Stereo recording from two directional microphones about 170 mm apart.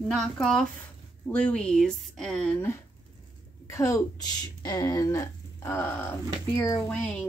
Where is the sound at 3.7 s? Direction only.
15° left (ahead or behind).